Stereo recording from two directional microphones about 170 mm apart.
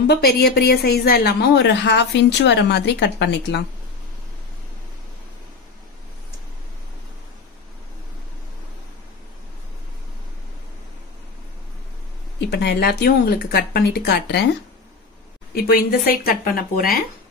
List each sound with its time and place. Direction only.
0.0 s a woman's voice: 75° left (ahead or behind); by 3.6 s 90° left
12.4 s speech: 80° left
15.5 s speech: 60° left (ahead or behind)